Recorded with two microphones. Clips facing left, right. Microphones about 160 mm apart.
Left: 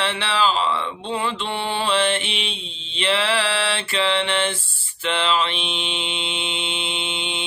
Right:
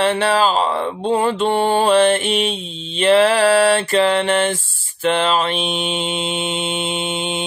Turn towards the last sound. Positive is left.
turn(degrees=-45)  # may be behind; listen again after turning